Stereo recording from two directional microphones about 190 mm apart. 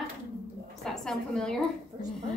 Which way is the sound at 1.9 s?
25° right (ahead or behind).